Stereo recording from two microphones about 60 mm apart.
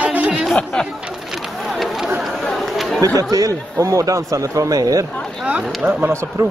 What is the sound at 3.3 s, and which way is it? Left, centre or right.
Speech, right.